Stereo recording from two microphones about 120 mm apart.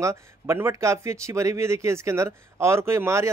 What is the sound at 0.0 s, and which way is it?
Speech, 25° right (ahead or behind).